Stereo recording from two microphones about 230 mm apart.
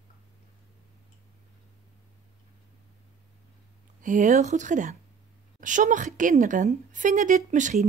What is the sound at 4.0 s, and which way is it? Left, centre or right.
A woman's voice, right.